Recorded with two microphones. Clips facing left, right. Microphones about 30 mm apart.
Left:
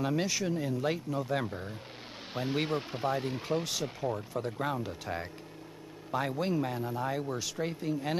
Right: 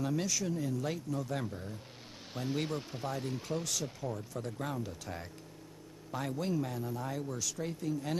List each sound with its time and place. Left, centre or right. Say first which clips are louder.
0.0 s speech: left 3 dB; left